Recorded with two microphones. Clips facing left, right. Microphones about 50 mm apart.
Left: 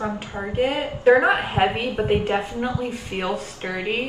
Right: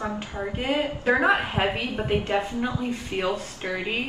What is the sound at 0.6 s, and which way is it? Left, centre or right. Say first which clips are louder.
Speech: left 4 dB; left.